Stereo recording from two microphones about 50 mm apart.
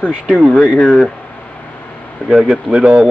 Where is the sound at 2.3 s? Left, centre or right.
Centre.